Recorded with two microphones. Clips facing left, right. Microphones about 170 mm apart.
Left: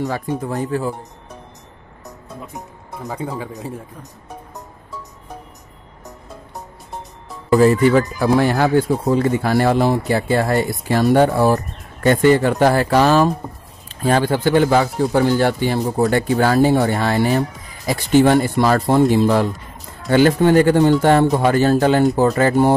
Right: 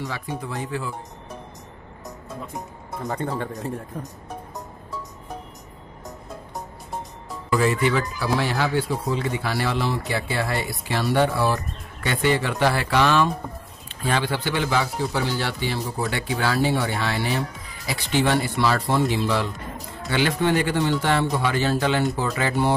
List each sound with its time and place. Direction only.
0.0 s speech: 45° left (ahead or behind)
2.5 s speech: 10° left (ahead or behind)
7.4 s speech: 40° left (ahead or behind)